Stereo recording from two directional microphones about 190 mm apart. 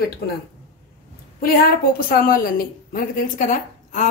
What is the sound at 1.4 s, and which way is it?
A woman's voice, 50° left (ahead or behind).